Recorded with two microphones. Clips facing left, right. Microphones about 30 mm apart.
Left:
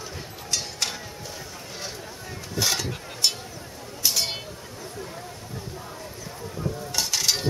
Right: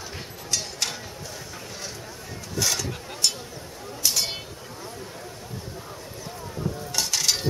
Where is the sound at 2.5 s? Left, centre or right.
Centre.